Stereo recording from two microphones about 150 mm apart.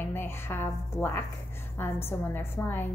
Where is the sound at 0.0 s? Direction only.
15° left (ahead or behind).